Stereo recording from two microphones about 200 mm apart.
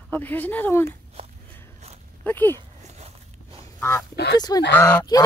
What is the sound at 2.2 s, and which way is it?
Speech, 10° left (ahead or behind).